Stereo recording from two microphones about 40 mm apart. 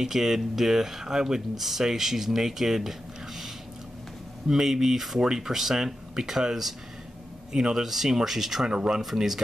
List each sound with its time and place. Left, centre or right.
0.0 s speech: centre
8.6 s speech: centre
9.0 s speech: centre